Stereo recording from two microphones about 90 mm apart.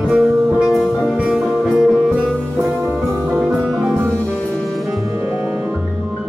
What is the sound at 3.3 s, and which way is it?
Music, 10° right (ahead or behind).